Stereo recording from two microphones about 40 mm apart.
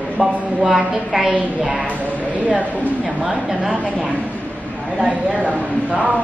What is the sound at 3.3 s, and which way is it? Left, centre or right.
Speech, centre.